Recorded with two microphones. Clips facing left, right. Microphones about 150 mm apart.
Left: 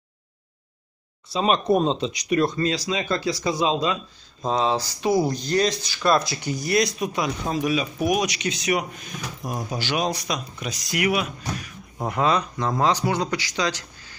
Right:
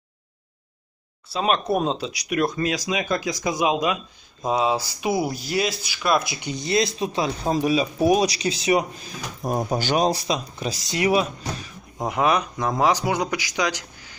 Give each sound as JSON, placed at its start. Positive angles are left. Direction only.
{"t": 1.3, "sound": "speech", "side_deg": -5}
{"t": 6.4, "sound": "speech", "side_deg": -25}
{"t": 9.4, "sound": "speech", "side_deg": -50}
{"t": 12.0, "sound": "speech", "side_deg": -15}